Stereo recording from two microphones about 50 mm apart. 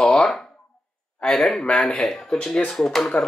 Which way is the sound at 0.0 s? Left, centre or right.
Centre.